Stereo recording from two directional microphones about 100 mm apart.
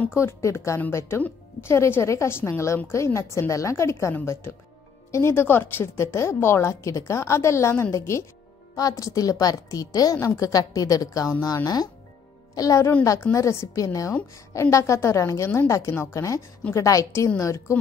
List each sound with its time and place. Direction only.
0.1 s a woman's voice: 25° left (ahead or behind)